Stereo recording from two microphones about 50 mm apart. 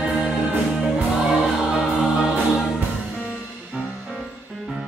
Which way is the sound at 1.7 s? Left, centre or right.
Centre.